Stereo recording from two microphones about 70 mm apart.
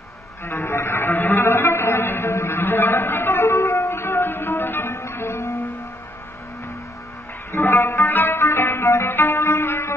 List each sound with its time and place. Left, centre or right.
0.5 s music: left
7.8 s music: left
8.1 s music: left